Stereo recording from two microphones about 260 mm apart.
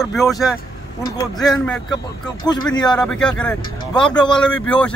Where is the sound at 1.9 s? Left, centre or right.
Centre.